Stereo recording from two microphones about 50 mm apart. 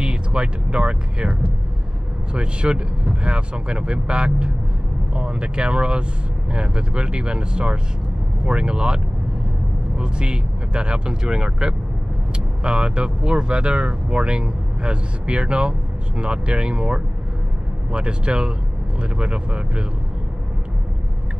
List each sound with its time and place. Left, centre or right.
0.0 s speech: right
2.3 s speech: centre